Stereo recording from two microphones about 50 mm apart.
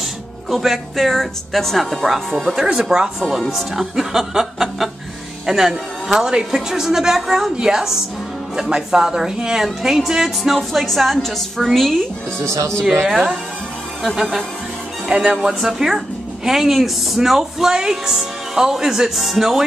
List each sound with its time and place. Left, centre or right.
0.5 s speech: centre
2.8 s a woman's voice: centre
13.1 s speech: centre
15.0 s speech: right
15.3 s a woman's voice: centre